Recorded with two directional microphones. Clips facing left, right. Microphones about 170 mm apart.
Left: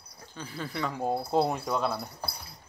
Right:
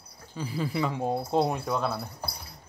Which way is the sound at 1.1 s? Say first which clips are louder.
Left 1 dB; 10° left (ahead or behind).